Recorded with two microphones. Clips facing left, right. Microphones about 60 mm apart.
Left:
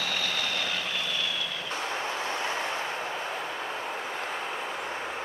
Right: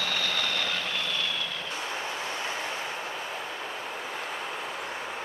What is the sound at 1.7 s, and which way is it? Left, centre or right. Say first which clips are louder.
Vehicle: left 5 dB; left.